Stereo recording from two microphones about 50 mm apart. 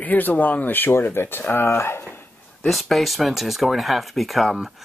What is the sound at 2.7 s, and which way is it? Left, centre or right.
Speech, centre.